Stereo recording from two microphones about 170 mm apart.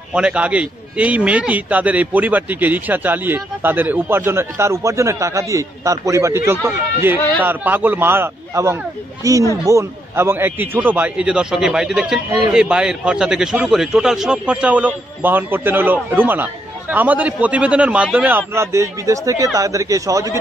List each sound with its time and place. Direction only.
0.1 s a man's voice: 5° right (ahead or behind)